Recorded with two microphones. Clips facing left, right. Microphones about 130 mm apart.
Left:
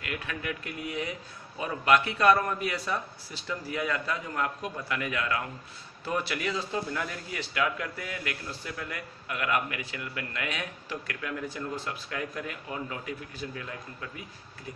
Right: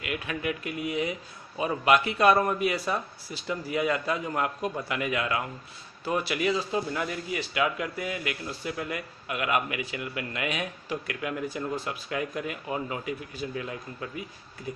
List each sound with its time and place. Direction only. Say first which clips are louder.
0.0 s a man's voice: right 4 dB; 10° right (ahead or behind)